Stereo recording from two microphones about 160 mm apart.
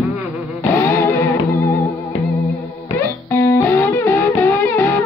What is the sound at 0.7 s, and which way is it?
Music, 15° left (ahead or behind).